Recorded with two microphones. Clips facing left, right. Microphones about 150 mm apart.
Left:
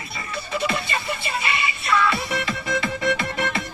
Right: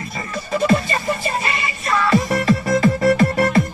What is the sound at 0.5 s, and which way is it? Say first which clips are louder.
Music: right 8 dB; 40° right (ahead or behind).